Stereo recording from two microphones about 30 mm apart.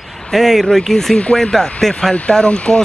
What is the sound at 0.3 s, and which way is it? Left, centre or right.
Speech, centre.